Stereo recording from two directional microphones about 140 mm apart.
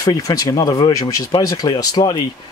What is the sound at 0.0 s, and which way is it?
Speech, 25° left (ahead or behind).